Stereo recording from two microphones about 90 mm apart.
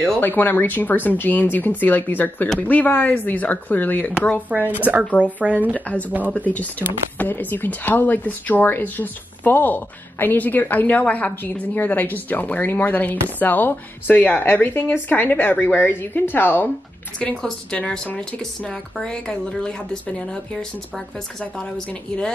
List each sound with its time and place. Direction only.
0.2 s speech: 20° left (ahead or behind)
4.7 s a woman's voice: 20° right (ahead or behind)
5.9 s speech: 15° left (ahead or behind)
17.2 s speech: 10° left (ahead or behind)
21.5 s speech: 10° left (ahead or behind)